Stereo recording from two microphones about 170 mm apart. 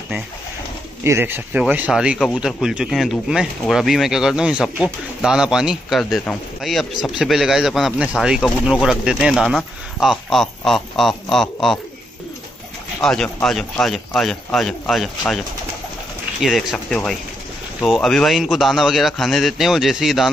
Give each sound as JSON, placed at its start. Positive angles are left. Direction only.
{"t": 1.0, "sound": "speech", "side_deg": -15}
{"t": 13.0, "sound": "speech", "side_deg": 5}